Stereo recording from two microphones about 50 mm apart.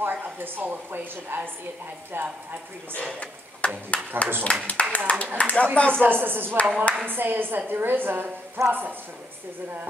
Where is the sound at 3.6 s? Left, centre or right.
Left.